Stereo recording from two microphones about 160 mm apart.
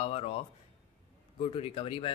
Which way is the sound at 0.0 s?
35° left (ahead or behind).